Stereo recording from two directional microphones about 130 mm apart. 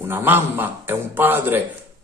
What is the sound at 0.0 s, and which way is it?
A man's voice, 15° right (ahead or behind).